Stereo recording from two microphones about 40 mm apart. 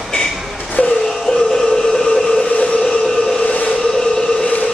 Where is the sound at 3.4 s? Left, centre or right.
Left.